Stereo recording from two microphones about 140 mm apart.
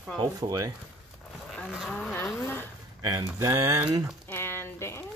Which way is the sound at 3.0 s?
25° right (ahead or behind).